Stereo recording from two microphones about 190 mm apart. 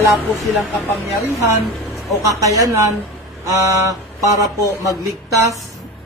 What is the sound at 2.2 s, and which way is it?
Speech, 15° right (ahead or behind).